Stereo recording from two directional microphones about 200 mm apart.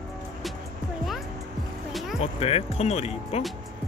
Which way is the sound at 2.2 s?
30° left (ahead or behind).